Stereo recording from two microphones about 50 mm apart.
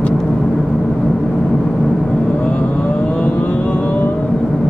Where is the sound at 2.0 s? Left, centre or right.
Centre.